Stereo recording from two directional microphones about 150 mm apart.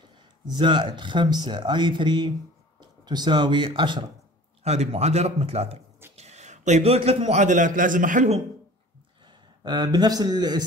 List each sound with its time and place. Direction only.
0.6 s speech: 30° right (ahead or behind)
4.6 s a man's voice: 45° right (ahead or behind)
9.2 s a man's voice: 30° right (ahead or behind)